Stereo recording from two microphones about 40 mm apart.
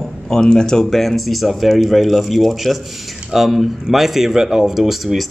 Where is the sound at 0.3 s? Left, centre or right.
Centre.